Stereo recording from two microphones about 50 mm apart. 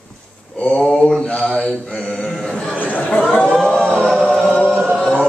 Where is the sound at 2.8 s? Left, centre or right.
Left.